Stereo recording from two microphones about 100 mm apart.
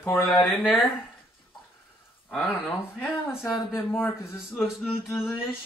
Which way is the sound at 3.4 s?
5° right (ahead or behind).